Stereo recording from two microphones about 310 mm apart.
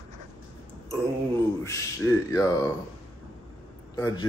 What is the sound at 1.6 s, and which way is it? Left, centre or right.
Speech, centre.